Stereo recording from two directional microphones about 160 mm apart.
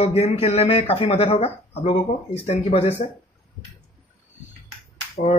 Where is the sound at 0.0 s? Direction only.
40° left (ahead or behind).